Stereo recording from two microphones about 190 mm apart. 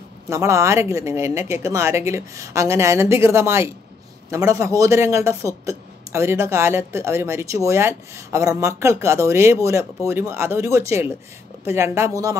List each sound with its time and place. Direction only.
0.3 s speech: 15° right (ahead or behind)